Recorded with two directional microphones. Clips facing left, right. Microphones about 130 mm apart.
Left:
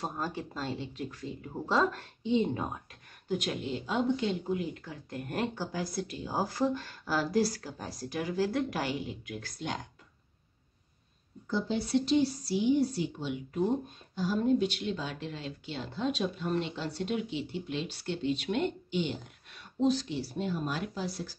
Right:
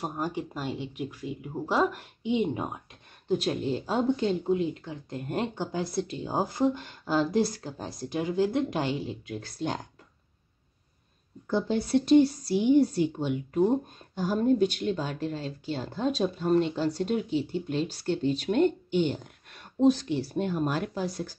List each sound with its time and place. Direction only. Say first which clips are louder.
0.0 s speech: right 4 dB; 15° right (ahead or behind); by 4.4 s 40° right (ahead or behind)
4.5 s speech: right 6 dB; 25° right (ahead or behind)
11.5 s speech: right 4 dB; 55° right (ahead or behind)